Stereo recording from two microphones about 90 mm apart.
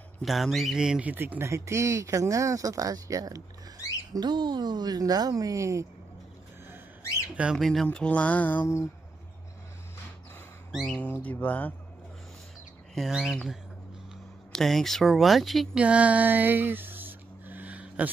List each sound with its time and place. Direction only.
0.2 s speech: centre (ahead or behind)
1.1 s speech: 25° right (ahead or behind); by 3.4 s 40° right (ahead or behind)
4.1 s a woman's voice: 55° right (ahead or behind); by 5.9 s 35° right (ahead or behind)
7.0 s a sound: 30° left (ahead or behind)
7.5 s speech: centre (ahead or behind); by 8.6 s 20° left (ahead or behind)
10.7 s speech: centre (ahead or behind)
11.2 s speech: 20° left (ahead or behind)
12.9 s speech: 5° right (ahead or behind)
14.5 s speech: 5° left (ahead or behind)
15.8 s a sound: 15° right (ahead or behind)